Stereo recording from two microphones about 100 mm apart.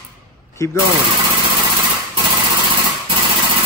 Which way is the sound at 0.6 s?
30° left (ahead or behind).